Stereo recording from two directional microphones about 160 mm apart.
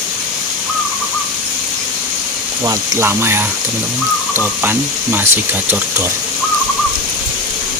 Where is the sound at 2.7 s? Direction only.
15° right (ahead or behind).